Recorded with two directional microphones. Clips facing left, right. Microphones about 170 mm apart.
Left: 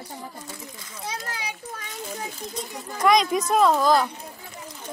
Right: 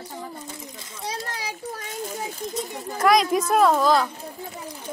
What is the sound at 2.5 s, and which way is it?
Speech, centre (ahead or behind).